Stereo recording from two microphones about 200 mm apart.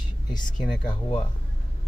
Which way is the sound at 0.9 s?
25° left (ahead or behind).